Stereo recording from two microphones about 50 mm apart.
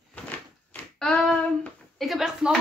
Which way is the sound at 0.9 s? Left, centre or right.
Centre.